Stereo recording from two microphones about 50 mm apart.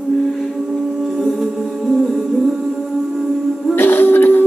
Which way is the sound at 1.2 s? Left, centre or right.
Centre.